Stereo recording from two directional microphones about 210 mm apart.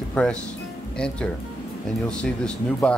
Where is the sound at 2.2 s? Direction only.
5° left (ahead or behind).